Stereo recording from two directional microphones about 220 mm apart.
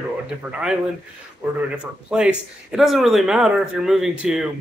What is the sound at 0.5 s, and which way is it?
Speech, 5° right (ahead or behind).